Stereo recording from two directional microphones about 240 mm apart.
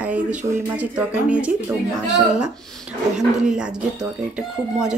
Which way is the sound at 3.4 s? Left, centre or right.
Centre.